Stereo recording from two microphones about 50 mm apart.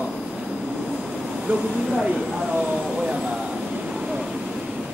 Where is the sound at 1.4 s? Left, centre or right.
Centre.